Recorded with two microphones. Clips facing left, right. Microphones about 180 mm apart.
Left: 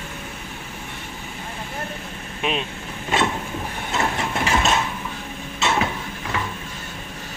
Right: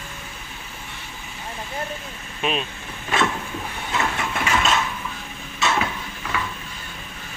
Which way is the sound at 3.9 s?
25° left (ahead or behind).